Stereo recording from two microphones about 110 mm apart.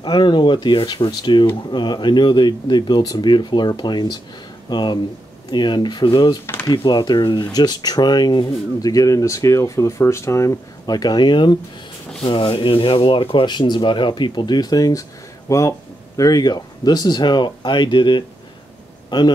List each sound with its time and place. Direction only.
0.0 s speech: 45° left (ahead or behind)
6.4 s speech: 20° left (ahead or behind)
6.7 s a man's voice: 40° left (ahead or behind)